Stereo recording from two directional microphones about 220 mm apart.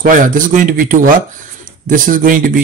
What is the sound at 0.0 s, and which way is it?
Speech, 35° right (ahead or behind).